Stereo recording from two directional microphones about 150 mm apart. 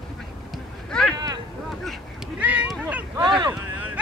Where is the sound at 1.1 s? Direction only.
25° right (ahead or behind).